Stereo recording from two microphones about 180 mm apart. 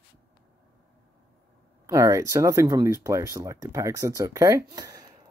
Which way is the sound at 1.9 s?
15° right (ahead or behind).